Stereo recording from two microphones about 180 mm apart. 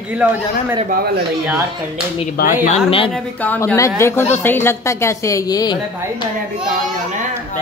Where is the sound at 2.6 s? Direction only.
35° left (ahead or behind).